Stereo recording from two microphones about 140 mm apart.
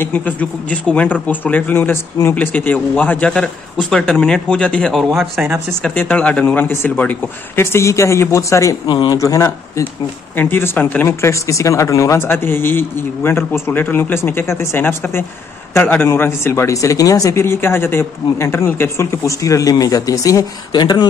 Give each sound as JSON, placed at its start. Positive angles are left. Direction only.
{"t": 0.0, "sound": "speech", "side_deg": 10}
{"t": 5.4, "sound": "speech", "side_deg": -15}
{"t": 5.8, "sound": "speech", "side_deg": 10}
{"t": 8.9, "sound": "speech", "side_deg": 35}
{"t": 9.2, "sound": "speech", "side_deg": 20}